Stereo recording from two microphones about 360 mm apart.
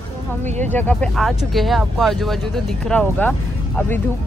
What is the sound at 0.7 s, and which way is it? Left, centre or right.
Speech, centre.